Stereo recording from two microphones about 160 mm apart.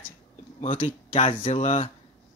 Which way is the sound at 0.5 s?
45° left (ahead or behind).